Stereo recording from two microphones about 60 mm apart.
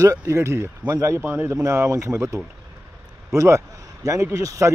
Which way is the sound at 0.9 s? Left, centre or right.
Right.